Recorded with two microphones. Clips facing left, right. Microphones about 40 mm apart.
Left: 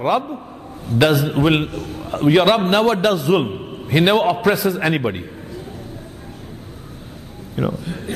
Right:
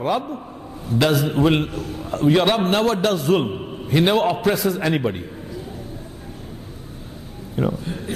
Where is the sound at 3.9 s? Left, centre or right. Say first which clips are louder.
Left 2 dB; left.